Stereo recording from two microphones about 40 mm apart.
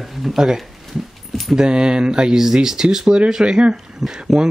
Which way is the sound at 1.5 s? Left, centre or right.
Right.